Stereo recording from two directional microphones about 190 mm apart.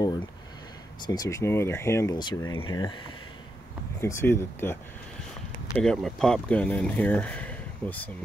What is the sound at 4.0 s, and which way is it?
Speech, 15° left (ahead or behind).